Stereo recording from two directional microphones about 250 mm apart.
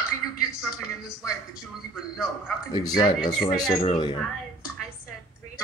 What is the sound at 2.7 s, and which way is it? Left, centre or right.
Speech, centre.